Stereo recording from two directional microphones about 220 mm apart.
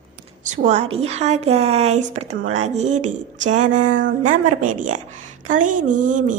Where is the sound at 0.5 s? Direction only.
35° right (ahead or behind).